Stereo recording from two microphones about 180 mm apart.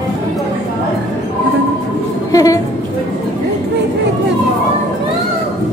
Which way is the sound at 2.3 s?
20° left (ahead or behind).